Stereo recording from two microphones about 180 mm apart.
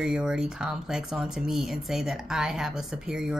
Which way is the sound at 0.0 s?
5° right (ahead or behind).